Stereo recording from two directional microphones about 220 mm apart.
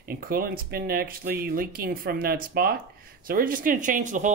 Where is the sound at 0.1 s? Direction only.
40° right (ahead or behind).